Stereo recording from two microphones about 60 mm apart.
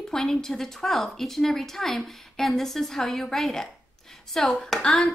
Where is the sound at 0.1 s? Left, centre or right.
Centre.